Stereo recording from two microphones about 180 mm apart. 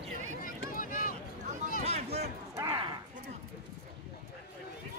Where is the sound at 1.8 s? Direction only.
35° right (ahead or behind).